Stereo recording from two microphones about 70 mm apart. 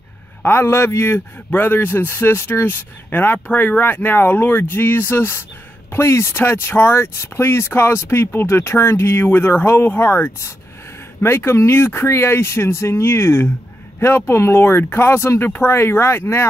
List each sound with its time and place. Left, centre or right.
0.4 s a man's voice: left